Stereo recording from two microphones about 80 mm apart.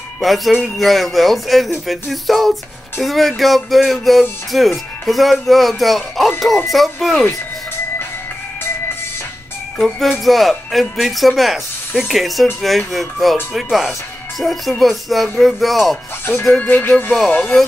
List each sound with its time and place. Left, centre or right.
0.2 s music: centre
9.8 s music: centre
16.5 s music: left